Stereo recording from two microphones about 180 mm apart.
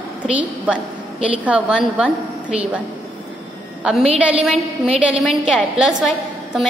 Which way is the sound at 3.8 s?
5° right (ahead or behind).